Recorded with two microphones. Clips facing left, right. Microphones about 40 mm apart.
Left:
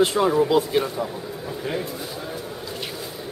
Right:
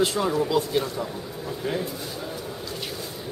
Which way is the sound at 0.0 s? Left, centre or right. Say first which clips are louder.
Left 4 dB; left.